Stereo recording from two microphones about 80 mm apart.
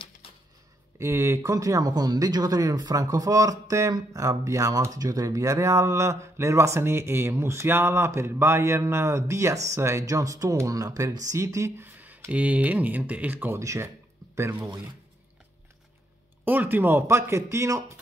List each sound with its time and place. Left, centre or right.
0.9 s speech: right
11.8 s a sound: right
12.3 s speech: centre
13.6 s speech: right
16.4 s speech: right